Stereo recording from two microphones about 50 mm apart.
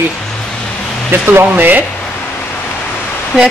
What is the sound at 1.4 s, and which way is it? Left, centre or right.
Speech, right.